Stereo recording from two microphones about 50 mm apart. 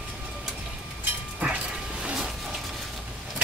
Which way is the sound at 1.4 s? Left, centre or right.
Right.